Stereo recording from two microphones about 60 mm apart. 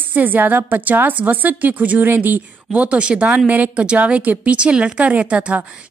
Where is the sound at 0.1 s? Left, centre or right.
Right.